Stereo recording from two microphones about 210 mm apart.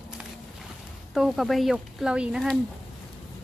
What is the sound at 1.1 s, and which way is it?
Speech, centre (ahead or behind).